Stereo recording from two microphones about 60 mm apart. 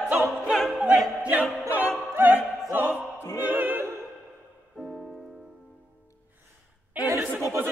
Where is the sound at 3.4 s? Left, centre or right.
Right.